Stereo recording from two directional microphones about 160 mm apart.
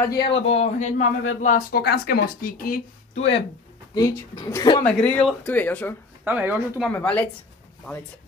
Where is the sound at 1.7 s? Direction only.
80° left; by 2.8 s 65° left (ahead or behind).